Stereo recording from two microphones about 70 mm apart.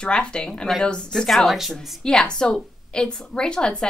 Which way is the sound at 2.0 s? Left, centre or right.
Centre.